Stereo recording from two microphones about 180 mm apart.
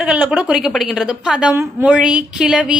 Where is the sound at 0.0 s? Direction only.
5° right (ahead or behind).